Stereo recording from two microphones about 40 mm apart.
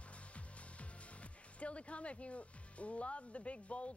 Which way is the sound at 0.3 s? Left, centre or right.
Left.